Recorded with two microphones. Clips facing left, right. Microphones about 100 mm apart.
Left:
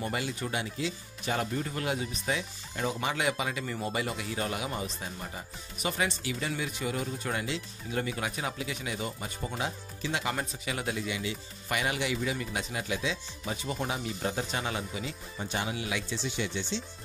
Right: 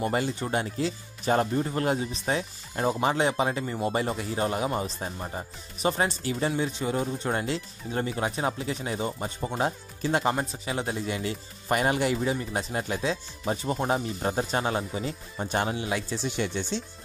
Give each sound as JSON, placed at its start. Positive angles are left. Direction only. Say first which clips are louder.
{"t": 0.0, "sound": "speech", "louder": "right 6 dB", "side_deg": -35}
{"t": 9.6, "sound": "speech", "louder": "right 8 dB", "side_deg": -45}
{"t": 10.3, "sound": "speech", "louder": "right 4 dB", "side_deg": -30}